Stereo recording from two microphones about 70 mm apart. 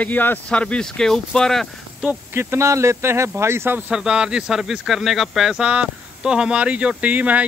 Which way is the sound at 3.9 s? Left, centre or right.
Centre.